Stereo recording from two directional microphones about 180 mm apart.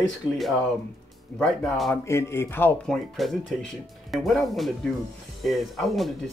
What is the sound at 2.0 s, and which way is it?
Speech, 15° left (ahead or behind).